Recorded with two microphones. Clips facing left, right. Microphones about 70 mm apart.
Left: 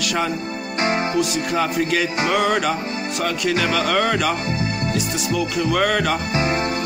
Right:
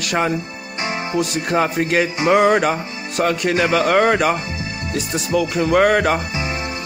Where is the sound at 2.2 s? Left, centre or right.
Right.